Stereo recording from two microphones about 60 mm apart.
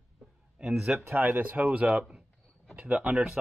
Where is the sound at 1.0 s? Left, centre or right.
Right.